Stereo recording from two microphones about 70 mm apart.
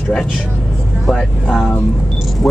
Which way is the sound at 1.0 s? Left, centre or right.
Centre.